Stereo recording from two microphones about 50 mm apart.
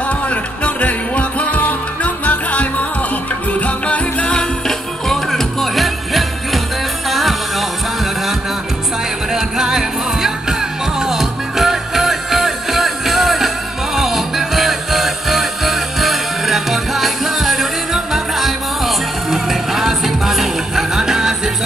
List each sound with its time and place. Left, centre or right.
0.3 s music: left
4.4 s music: centre
9.3 s music: centre